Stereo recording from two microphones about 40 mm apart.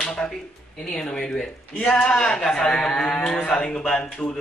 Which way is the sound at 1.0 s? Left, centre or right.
Centre.